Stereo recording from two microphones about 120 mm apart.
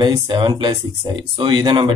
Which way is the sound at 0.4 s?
40° right (ahead or behind).